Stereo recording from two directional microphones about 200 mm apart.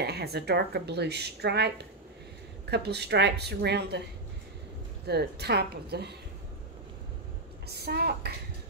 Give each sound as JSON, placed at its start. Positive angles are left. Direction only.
{"t": 0.0, "sound": "speech", "side_deg": -55}
{"t": 2.7, "sound": "speech", "side_deg": -55}
{"t": 5.0, "sound": "speech", "side_deg": -55}
{"t": 7.6, "sound": "a woman's voice", "side_deg": -55}